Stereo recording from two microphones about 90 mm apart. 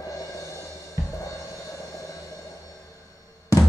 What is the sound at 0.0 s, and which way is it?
Music, 40° left (ahead or behind).